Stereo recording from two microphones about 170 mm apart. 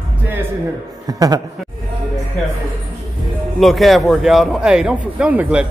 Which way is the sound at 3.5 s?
Centre (ahead or behind).